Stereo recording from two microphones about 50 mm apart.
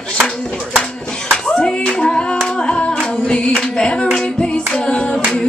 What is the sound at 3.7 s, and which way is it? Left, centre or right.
Hands, centre.